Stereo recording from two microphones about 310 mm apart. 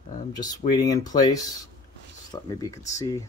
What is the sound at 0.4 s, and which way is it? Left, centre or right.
Speech, centre.